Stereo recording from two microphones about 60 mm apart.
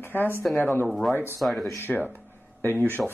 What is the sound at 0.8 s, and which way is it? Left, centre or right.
Speech, centre.